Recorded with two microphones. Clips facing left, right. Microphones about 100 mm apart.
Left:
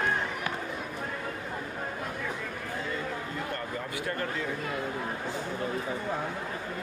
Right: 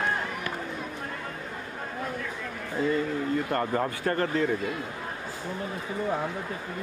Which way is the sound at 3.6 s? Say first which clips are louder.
Right 7 dB; 55° right (ahead or behind).